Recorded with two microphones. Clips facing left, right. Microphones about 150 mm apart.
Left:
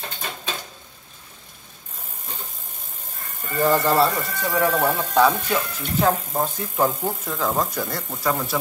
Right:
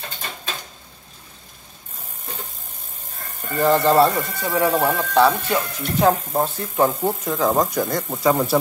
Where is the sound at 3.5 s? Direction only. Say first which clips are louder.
Right 3 dB; 20° right (ahead or behind).